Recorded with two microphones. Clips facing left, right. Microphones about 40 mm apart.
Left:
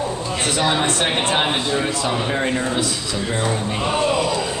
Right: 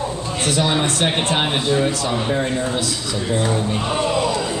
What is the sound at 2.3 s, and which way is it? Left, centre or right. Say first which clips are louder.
Speech: even; centre.